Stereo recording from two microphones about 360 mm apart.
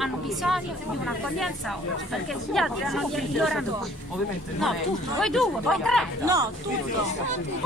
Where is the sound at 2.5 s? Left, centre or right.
Centre.